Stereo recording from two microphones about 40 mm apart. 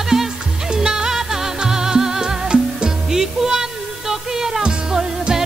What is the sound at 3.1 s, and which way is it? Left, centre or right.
Music, centre.